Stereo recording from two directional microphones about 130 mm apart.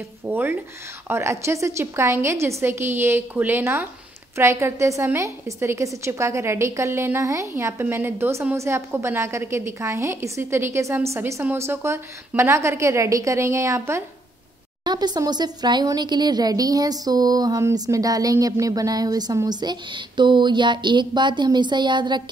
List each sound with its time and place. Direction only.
0.3 s a woman's voice: 15° right (ahead or behind)
14.9 s speech: 30° right (ahead or behind)